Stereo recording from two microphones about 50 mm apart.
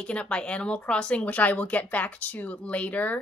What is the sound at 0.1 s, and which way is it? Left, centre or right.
Speech, left.